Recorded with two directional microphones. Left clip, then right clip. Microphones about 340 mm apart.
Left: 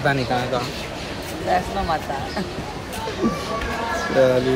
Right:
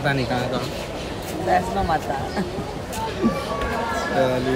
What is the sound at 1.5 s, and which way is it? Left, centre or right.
Speech, centre.